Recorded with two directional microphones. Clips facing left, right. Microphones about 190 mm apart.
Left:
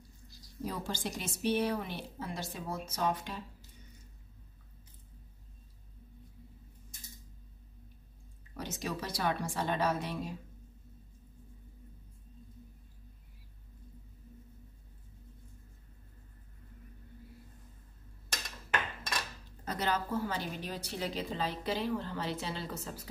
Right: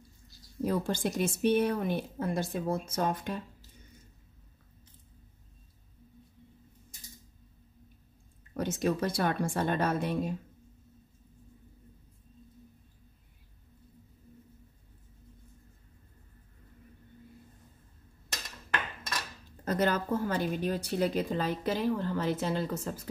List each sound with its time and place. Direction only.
0.7 s speech: 55° right (ahead or behind)
8.5 s speech: 50° right (ahead or behind)
19.6 s speech: 50° right (ahead or behind)